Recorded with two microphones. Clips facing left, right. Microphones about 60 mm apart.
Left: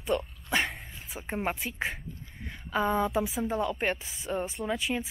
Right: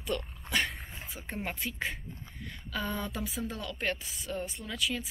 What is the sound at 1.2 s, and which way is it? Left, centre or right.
Speech, centre.